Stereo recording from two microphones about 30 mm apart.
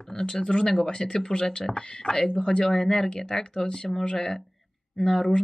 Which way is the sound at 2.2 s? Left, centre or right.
Centre.